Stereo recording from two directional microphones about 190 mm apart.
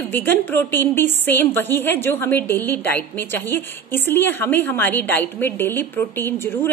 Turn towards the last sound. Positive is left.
turn(degrees=10)  # may be behind; listen again after turning